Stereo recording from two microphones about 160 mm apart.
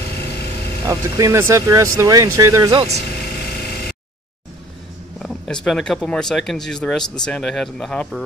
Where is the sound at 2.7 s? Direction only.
40° right (ahead or behind).